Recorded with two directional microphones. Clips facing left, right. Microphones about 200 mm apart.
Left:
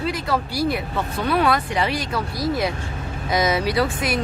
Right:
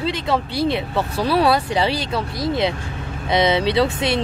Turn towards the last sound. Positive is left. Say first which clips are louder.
# right 3 dB
turn(degrees=-25)  # may be behind; listen again after turning